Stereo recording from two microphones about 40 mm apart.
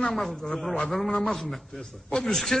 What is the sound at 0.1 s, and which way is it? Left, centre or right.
A man's voice, centre.